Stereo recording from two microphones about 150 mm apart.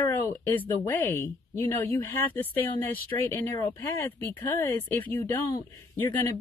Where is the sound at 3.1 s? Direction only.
20° left (ahead or behind).